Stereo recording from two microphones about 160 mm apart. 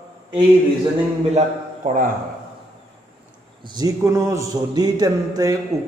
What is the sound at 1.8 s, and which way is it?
Speech, 55° right (ahead or behind).